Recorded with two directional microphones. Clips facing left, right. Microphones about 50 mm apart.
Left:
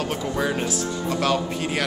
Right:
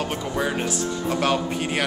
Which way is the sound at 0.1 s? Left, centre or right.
Centre.